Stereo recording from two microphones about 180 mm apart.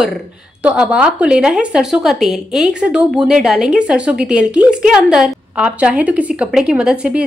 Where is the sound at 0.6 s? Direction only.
5° right (ahead or behind).